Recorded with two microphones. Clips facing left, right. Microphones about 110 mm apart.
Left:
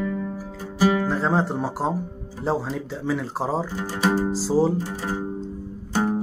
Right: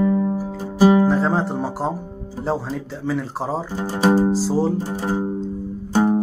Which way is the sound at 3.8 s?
35° right (ahead or behind).